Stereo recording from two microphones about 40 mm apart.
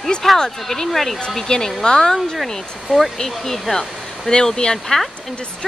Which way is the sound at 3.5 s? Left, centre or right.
Centre.